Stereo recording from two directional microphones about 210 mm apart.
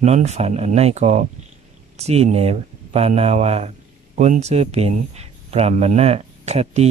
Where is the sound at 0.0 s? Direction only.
30° right (ahead or behind).